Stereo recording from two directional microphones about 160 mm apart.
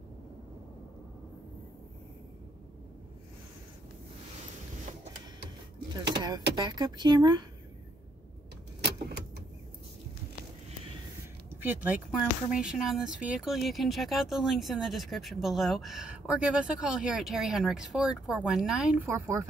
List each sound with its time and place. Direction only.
6.1 s chopping: 25° right (ahead or behind)
6.5 s speech: 25° right (ahead or behind)
11.6 s speech: 10° right (ahead or behind)
19.0 s speech: 20° right (ahead or behind)